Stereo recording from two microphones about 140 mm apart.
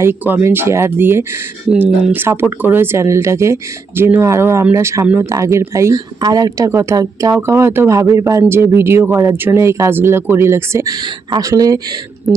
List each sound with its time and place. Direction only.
0.0 s speech: 15° right (ahead or behind)